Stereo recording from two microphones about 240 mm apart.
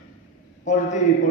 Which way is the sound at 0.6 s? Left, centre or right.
Left.